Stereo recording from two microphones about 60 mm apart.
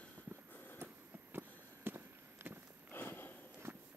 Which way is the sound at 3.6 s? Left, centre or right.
Right.